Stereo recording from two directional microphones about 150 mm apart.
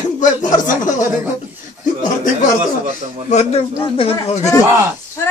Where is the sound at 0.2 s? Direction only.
60° left (ahead or behind).